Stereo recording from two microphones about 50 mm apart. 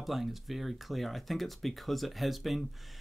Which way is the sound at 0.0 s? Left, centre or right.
Centre.